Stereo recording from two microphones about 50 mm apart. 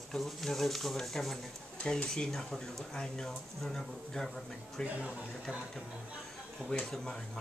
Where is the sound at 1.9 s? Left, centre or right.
Centre.